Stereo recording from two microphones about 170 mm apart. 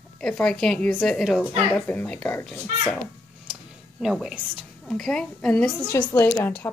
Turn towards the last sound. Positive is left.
turn(degrees=10)  # may be behind; listen again after turning